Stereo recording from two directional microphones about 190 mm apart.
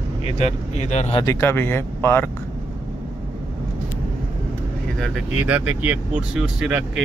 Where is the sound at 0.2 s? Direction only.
35° left (ahead or behind).